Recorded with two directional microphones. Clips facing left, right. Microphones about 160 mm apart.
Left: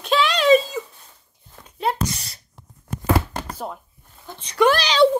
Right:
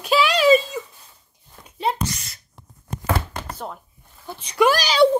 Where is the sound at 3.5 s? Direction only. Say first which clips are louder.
Left 1 dB; 5° left (ahead or behind).